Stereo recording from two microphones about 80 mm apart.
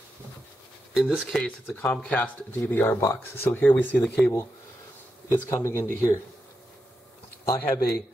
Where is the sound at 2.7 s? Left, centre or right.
Left.